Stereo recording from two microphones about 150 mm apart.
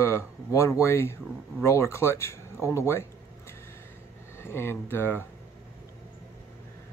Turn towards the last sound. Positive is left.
turn(degrees=15)  # may be behind; listen again after turning